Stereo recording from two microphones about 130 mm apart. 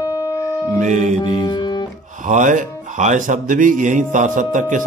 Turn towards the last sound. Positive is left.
turn(degrees=-75)  # may be behind; listen again after turning